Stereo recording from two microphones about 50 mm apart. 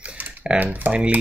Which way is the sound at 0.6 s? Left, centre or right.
Right.